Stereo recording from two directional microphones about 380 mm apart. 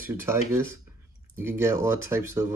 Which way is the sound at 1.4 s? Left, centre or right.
Centre.